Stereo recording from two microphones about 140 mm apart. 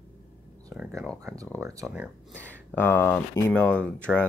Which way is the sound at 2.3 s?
10° left (ahead or behind).